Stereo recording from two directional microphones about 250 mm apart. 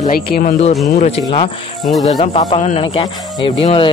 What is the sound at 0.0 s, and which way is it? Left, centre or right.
Speech, left.